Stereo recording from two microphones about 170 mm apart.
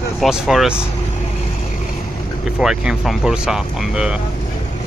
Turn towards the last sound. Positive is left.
turn(degrees=-5)  # may be behind; listen again after turning